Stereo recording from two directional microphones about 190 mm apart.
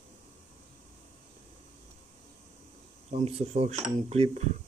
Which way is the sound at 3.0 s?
35° right (ahead or behind).